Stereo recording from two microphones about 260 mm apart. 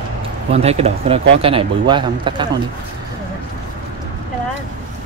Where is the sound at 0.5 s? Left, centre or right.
Right.